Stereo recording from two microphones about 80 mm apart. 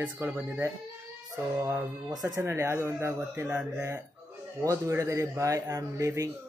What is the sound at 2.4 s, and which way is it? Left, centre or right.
Speech, right.